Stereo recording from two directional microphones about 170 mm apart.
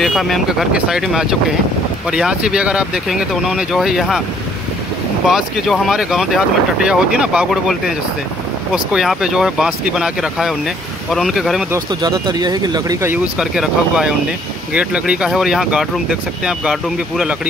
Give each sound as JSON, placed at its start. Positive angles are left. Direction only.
{"t": 0.0, "sound": "speech", "side_deg": 0}
{"t": 5.2, "sound": "speech", "side_deg": 0}
{"t": 11.7, "sound": "speech", "side_deg": -20}